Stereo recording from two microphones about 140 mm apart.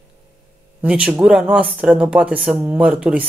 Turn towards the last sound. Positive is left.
turn(degrees=-5)  # may be behind; listen again after turning